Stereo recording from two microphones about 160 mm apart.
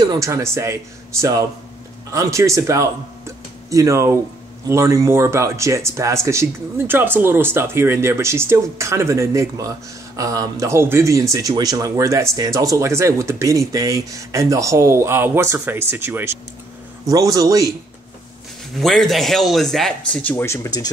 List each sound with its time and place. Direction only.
0.0 s speech: 20° right (ahead or behind)
18.8 s a man's voice: centre (ahead or behind); by 20.9 s 20° left (ahead or behind)